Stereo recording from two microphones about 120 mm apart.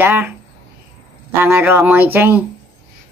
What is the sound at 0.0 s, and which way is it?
Speech, 20° right (ahead or behind).